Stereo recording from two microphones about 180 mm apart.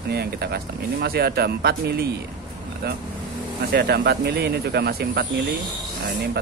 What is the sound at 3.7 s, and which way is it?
Speech, 60° right (ahead or behind).